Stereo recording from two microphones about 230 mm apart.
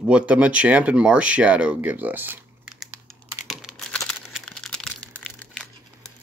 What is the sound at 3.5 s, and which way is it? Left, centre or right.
Crumpling, centre.